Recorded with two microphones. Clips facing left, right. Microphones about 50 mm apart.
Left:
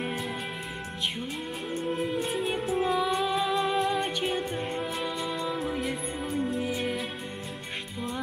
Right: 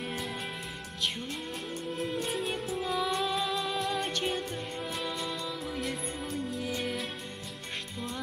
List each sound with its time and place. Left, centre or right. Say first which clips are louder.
1.7 s music: left 9 dB; left
2.2 s music: left 4 dB; centre
3.5 s music: left 5 dB; left
5.7 s music: left 4 dB; centre